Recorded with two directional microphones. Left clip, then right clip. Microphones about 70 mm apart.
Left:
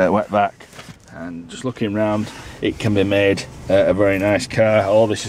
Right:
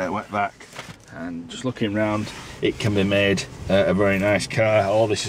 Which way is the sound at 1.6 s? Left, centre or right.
Centre.